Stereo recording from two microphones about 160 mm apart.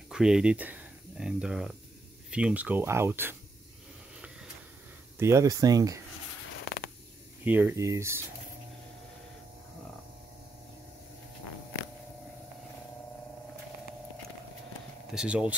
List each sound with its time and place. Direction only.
0.1 s speech: 5° right (ahead or behind)
5.2 s speech: 20° right (ahead or behind)
7.4 s speech: 10° right (ahead or behind)
15.1 s speech: 5° right (ahead or behind)